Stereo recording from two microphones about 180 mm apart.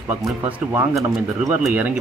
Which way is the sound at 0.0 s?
15° right (ahead or behind).